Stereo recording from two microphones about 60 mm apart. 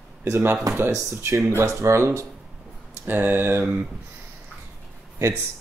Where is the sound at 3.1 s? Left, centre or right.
Right.